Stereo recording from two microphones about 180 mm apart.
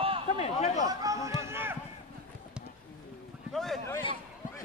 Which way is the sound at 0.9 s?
20° right (ahead or behind).